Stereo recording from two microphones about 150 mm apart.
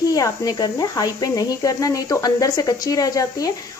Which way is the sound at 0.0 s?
25° left (ahead or behind).